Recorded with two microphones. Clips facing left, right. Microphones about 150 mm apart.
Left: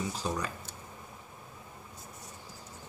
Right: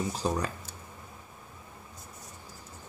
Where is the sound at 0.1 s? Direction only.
45° right (ahead or behind).